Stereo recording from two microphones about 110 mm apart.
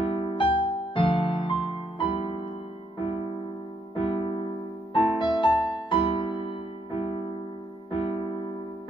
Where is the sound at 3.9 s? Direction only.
50° left (ahead or behind).